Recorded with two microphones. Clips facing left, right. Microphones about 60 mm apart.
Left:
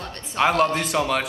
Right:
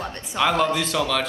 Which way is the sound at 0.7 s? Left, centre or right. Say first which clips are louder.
Left 1 dB; left.